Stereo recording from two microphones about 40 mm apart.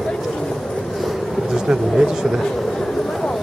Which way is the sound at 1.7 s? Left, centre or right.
Centre.